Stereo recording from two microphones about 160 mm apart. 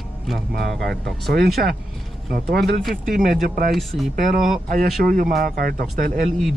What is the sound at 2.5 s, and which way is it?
Speech, 75° right (ahead or behind).